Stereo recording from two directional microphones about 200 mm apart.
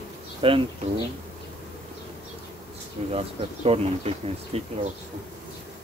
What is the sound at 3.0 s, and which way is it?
Speech, 30° right (ahead or behind).